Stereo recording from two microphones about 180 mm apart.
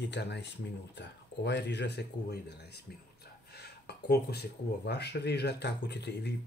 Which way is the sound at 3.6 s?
65° left (ahead or behind).